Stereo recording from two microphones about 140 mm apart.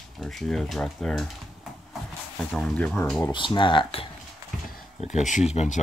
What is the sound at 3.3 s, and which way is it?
Speech, 35° left (ahead or behind).